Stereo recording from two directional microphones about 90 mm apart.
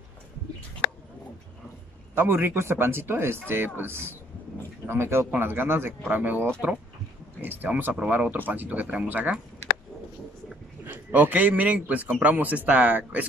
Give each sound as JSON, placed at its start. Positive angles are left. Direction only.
{"t": 2.1, "sound": "a man's voice", "side_deg": -25}
{"t": 10.9, "sound": "a man's voice", "side_deg": -20}